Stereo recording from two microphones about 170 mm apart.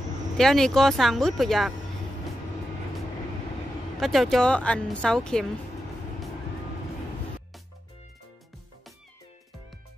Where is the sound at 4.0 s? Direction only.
Centre (ahead or behind).